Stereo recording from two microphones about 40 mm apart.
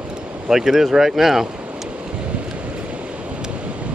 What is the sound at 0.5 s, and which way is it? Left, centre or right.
Speech, centre.